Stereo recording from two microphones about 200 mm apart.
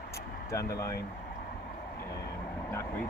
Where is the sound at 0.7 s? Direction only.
15° left (ahead or behind).